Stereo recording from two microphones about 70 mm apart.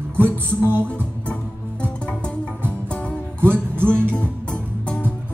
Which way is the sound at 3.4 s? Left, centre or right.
Right.